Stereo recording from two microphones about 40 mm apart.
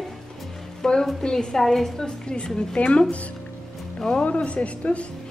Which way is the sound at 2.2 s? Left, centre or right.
Left.